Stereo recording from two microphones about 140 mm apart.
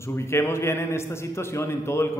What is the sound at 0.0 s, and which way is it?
A man's voice, 20° left (ahead or behind).